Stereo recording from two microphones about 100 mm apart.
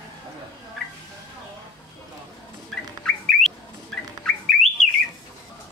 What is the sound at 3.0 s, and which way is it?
Bird, 5° left (ahead or behind).